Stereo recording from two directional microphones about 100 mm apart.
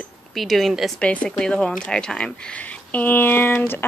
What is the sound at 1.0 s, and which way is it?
Speech, 10° left (ahead or behind).